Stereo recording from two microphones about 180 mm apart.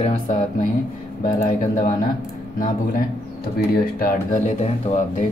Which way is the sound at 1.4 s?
50° left (ahead or behind).